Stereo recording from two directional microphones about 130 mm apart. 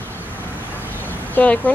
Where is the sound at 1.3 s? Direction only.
10° left (ahead or behind).